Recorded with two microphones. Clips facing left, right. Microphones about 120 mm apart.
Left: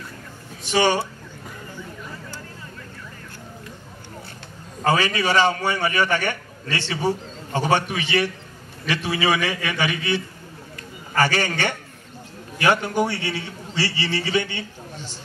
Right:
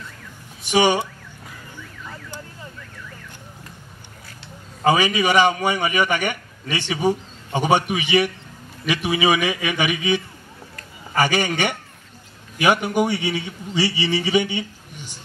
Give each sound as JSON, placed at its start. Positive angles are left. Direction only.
{"t": 0.7, "sound": "a man's voice", "side_deg": -15}
{"t": 4.8, "sound": "a man's voice", "side_deg": -15}